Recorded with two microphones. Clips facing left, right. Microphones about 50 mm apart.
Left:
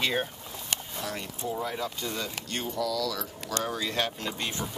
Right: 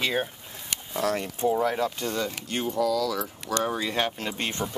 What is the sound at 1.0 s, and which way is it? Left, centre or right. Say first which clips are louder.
Speech: right 9 dB; right.